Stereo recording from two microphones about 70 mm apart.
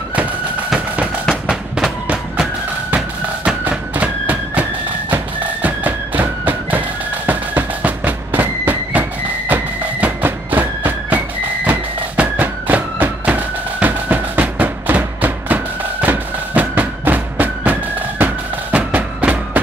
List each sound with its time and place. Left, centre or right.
3.4 s music: right